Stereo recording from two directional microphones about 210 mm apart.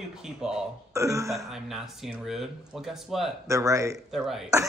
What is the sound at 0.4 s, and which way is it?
Speech, 5° right (ahead or behind).